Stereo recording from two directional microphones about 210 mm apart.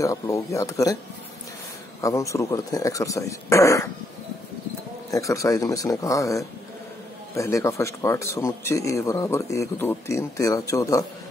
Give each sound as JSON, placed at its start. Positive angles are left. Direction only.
{"t": 0.0, "sound": "speech", "side_deg": 15}
{"t": 2.0, "sound": "speech", "side_deg": 15}
{"t": 5.1, "sound": "speech", "side_deg": 15}